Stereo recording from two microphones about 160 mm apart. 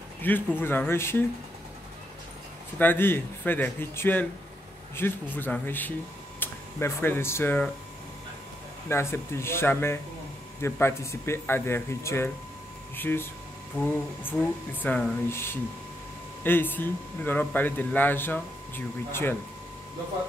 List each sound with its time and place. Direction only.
0.2 s speech: 10° left (ahead or behind)
2.8 s speech: 15° left (ahead or behind)
8.8 s speech: 15° left (ahead or behind)